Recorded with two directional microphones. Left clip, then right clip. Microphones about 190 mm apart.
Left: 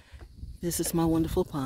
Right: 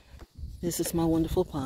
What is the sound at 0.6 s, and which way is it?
Speech, 25° left (ahead or behind).